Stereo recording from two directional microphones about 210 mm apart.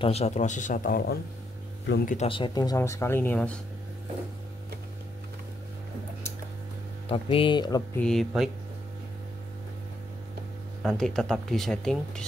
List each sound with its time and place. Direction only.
0.0 s speech: 30° left (ahead or behind)
2.1 s speech: 25° left (ahead or behind); by 3.5 s 10° left (ahead or behind)
7.1 s speech: 25° left (ahead or behind)
8.0 s speech: centre (ahead or behind)
10.8 s speech: centre (ahead or behind)